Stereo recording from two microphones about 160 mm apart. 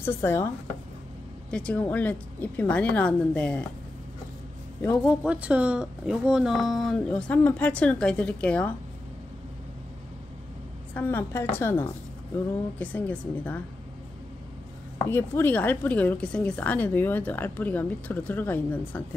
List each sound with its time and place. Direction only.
0.0 s speech: 15° left (ahead or behind)
1.5 s speech: 5° left (ahead or behind)
5.0 s speech: 5° right (ahead or behind)
11.0 s speech: 15° left (ahead or behind)
15.0 s speech: 15° left (ahead or behind)